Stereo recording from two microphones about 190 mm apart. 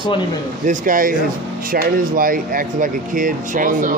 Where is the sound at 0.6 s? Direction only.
45° right (ahead or behind).